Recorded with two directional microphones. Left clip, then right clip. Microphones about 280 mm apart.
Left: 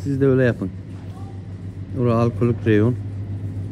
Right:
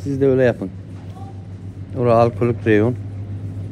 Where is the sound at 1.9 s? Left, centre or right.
Centre.